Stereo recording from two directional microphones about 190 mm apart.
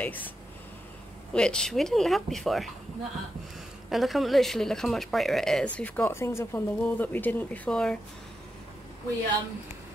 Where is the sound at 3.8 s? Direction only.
Centre (ahead or behind).